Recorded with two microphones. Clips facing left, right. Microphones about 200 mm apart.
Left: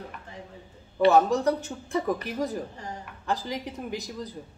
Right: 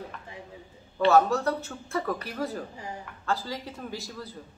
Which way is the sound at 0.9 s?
15° left (ahead or behind).